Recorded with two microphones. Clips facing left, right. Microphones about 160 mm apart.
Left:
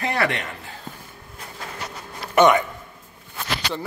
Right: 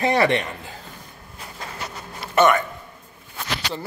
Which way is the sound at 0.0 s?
20° right (ahead or behind).